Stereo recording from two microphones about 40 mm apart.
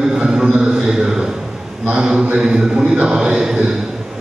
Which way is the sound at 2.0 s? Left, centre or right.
Centre.